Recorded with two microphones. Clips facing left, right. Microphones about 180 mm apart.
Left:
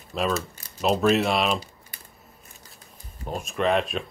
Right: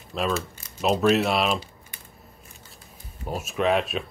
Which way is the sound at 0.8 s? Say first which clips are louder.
Even; centre (ahead or behind).